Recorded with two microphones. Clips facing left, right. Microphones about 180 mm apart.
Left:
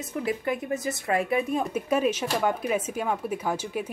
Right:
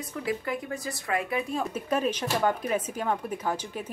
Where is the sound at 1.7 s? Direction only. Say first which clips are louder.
Left 3 dB; 10° left (ahead or behind).